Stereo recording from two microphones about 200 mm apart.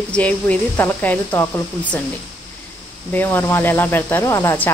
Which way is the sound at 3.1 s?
10° left (ahead or behind).